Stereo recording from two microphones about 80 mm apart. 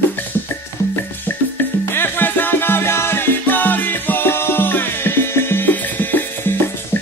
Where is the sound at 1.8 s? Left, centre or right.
Left.